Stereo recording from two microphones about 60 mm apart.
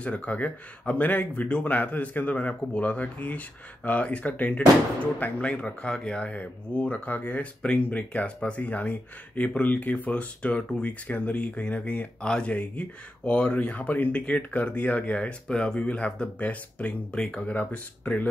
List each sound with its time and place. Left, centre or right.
0.0 s a man's voice: left